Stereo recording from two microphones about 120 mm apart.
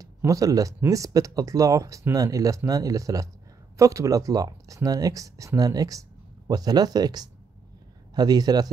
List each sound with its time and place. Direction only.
0.0 s speech: 30° right (ahead or behind)